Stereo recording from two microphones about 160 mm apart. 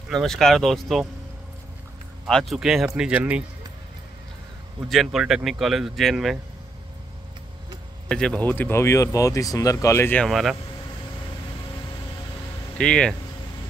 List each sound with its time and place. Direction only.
0.1 s speech: centre (ahead or behind)
2.2 s speech: centre (ahead or behind)
4.8 s speech: centre (ahead or behind)
8.1 s speech: 5° left (ahead or behind)
10.2 s speech: centre (ahead or behind)
12.7 s speech: 5° left (ahead or behind)